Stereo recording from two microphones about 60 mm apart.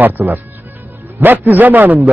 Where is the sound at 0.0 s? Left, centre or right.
Right.